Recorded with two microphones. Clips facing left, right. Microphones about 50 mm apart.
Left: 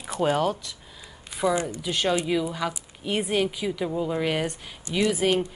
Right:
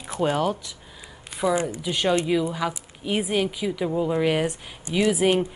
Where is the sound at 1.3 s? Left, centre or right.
Centre.